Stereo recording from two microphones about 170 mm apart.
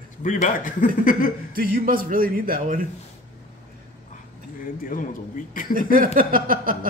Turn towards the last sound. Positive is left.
turn(degrees=-55)  # may be behind; listen again after turning